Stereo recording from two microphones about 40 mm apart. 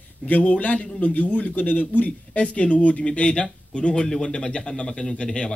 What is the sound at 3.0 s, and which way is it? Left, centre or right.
A man's voice, left.